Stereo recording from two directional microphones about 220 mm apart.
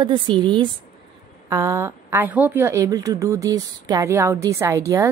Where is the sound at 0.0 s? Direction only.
20° right (ahead or behind).